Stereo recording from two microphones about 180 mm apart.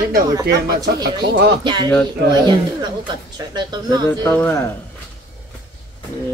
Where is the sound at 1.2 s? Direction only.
70° right (ahead or behind).